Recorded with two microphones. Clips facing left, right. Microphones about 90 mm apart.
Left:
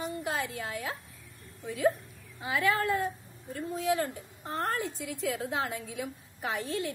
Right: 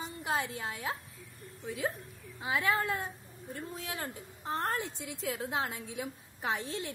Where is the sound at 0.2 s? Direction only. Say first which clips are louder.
Even; 25° right (ahead or behind).